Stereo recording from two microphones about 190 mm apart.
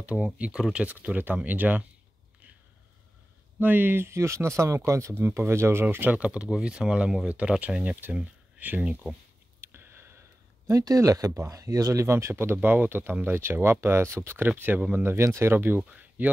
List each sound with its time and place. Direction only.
0.0 s speech: 5° right (ahead or behind)
3.5 s speech: 10° right (ahead or behind)
9.6 s a sound: 10° right (ahead or behind)
10.7 s speech: 20° right (ahead or behind)